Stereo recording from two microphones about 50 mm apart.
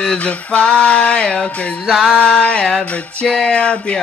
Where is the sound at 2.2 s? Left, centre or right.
Left.